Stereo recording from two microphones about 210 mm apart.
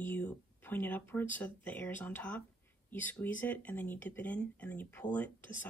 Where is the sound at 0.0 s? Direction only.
10° left (ahead or behind).